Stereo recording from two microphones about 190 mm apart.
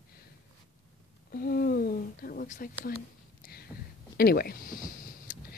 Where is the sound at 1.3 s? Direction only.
50° left (ahead or behind).